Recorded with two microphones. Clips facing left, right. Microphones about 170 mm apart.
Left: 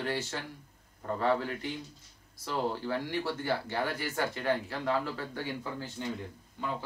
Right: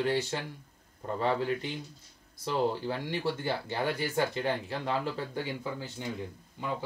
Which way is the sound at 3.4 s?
20° right (ahead or behind).